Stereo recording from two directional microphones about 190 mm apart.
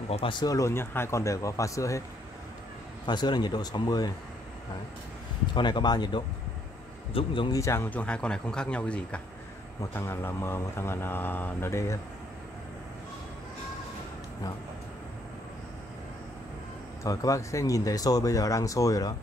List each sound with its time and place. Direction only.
0.1 s speech: 25° left (ahead or behind)
3.1 s speech: 25° left (ahead or behind)
5.5 s speech: 25° left (ahead or behind)
17.0 s speech: 20° left (ahead or behind)